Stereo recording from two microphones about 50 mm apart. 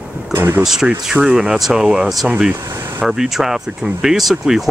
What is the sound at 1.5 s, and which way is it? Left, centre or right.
Speech, centre.